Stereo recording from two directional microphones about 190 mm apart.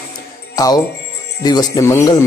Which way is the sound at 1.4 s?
20° left (ahead or behind).